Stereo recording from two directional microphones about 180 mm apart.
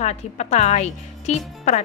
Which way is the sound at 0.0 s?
40° left (ahead or behind).